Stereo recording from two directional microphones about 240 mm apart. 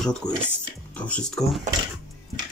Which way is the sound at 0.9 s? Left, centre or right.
Centre.